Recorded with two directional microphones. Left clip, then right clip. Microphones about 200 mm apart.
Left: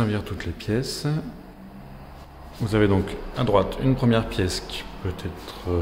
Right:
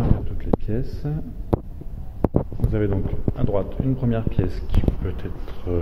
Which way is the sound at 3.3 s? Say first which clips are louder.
Left 5 dB; 20° left (ahead or behind).